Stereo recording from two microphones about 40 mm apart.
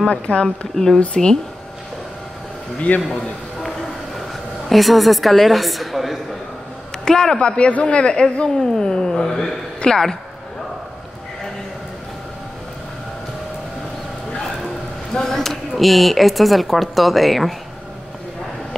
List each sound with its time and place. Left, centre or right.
0.0 s speech: left
2.9 s a man's voice: left
4.6 s speech: centre
7.1 s speech: centre
8.7 s a sound: centre
15.1 s a sound: centre
15.7 s speech: centre